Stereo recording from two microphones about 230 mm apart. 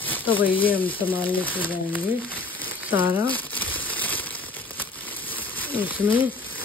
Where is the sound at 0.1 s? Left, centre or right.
Centre.